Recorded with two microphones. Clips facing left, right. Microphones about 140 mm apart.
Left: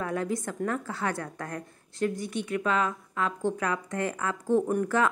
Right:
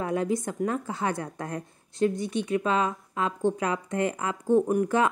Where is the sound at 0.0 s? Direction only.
20° right (ahead or behind).